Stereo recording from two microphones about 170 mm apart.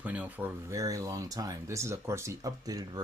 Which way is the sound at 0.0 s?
10° right (ahead or behind).